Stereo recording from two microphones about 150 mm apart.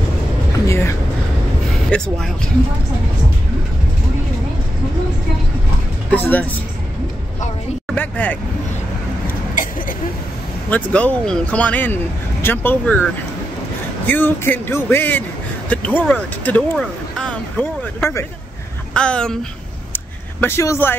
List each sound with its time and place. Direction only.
0.7 s vehicle: 15° left (ahead or behind)
1.7 s speech: 5° left (ahead or behind)
6.0 s speech: 10° left (ahead or behind)
7.9 s speech: 10° left (ahead or behind)
10.7 s speech: 10° left (ahead or behind)
14.0 s speech: 15° left (ahead or behind)
15.7 s vehicle: 10° left (ahead or behind)
16.1 s speech: 10° left (ahead or behind)
19.9 s vehicle: 15° left (ahead or behind)